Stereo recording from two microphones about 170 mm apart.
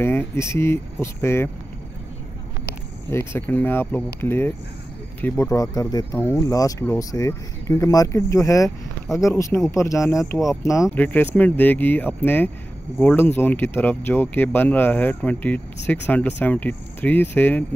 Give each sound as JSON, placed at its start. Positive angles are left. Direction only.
{"t": 0.0, "sound": "speech", "side_deg": 15}
{"t": 3.1, "sound": "speech", "side_deg": 15}